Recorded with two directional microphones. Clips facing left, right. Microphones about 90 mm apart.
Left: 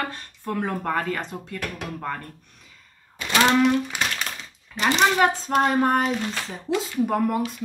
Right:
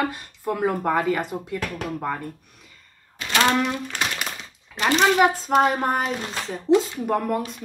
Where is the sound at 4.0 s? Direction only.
5° right (ahead or behind).